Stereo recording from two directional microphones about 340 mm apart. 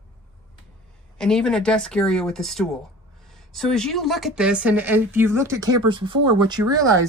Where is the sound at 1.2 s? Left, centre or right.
Centre.